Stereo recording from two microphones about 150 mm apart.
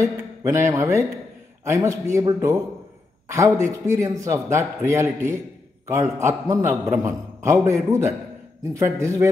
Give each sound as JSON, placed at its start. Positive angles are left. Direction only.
{"t": 0.0, "sound": "a man's voice", "side_deg": -20}